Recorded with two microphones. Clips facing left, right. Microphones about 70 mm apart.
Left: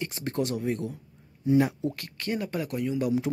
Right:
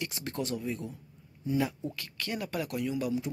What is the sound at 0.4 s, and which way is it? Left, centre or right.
Speech, left.